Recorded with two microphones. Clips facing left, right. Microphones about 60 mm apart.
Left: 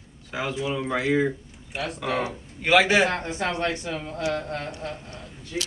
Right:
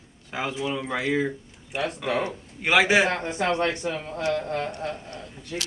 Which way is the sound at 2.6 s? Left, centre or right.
Centre.